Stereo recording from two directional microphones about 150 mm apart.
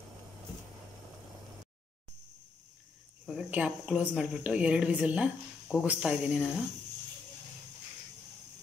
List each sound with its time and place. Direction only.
3.3 s speech: 5° right (ahead or behind)